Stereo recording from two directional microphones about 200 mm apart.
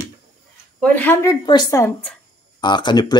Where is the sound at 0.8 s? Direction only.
10° left (ahead or behind).